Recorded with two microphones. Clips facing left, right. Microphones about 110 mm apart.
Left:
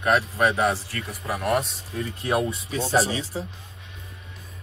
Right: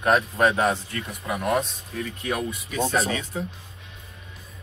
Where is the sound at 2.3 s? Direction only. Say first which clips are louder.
Left 5 dB; 30° left (ahead or behind).